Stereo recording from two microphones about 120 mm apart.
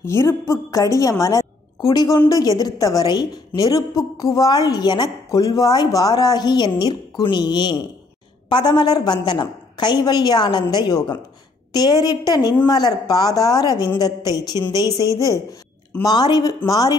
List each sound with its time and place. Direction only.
0.0 s a woman's voice: 25° left (ahead or behind)